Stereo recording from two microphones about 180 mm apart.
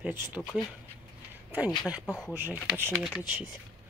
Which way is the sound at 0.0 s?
10° right (ahead or behind).